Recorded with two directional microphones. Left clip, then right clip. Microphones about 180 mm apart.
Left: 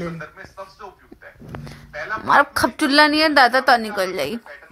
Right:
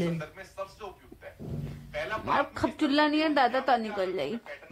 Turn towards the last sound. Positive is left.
turn(degrees=15)  # may be behind; listen again after turning